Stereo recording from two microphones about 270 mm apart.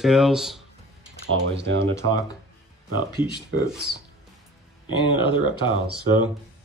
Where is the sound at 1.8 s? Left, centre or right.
Centre.